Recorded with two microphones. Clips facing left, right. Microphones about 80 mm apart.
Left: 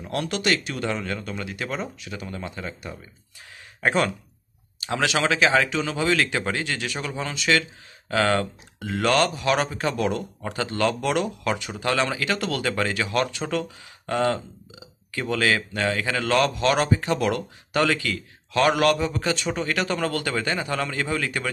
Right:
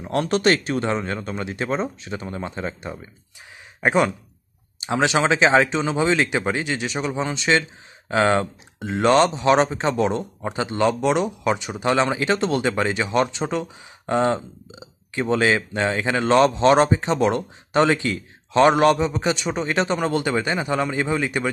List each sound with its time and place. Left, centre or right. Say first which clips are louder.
0.0 s speech: right 6 dB; right